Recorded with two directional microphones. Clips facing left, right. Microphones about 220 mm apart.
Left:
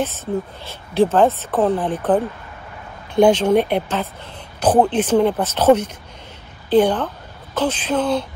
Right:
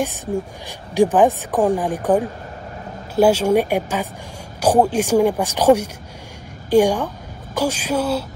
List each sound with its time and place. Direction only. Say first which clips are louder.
0.0 s a woman's voice: even; 15° right (ahead or behind)